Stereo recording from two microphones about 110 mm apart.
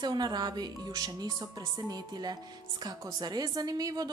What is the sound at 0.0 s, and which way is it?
Speech, 40° right (ahead or behind).